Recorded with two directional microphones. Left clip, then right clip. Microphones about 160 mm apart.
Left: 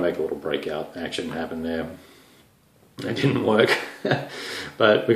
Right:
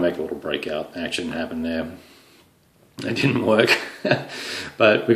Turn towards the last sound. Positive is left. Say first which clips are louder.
# right 2 dB
turn(degrees=-25)  # may be behind; listen again after turning